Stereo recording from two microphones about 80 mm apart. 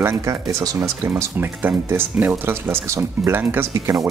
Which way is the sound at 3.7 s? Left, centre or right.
Right.